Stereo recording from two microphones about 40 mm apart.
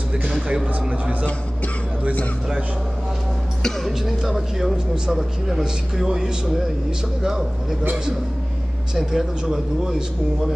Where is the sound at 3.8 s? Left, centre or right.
Centre.